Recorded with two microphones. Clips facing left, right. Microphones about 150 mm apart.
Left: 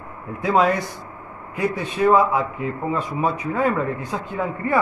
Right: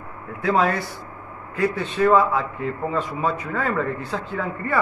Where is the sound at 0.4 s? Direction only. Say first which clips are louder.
Left 2 dB; 15° left (ahead or behind).